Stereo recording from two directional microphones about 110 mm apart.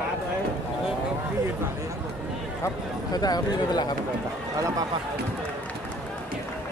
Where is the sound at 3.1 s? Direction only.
35° left (ahead or behind).